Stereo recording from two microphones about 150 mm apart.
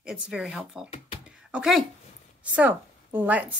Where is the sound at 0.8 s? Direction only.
45° left (ahead or behind).